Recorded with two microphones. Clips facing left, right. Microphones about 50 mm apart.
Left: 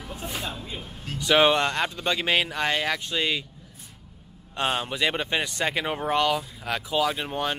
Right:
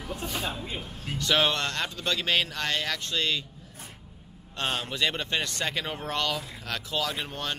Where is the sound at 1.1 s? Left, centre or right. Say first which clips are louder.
Left 5 dB; centre.